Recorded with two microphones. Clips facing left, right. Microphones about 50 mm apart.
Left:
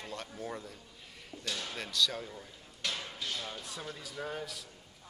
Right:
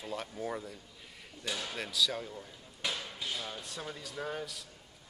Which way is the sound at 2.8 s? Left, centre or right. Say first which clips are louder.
Right 1 dB; centre.